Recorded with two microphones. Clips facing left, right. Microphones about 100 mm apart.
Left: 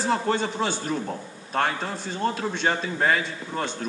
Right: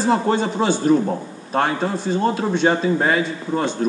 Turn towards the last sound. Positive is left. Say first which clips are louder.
# right 8 dB
turn(degrees=-10)  # may be behind; listen again after turning